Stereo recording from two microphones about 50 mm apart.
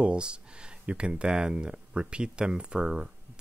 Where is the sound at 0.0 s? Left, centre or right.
Right.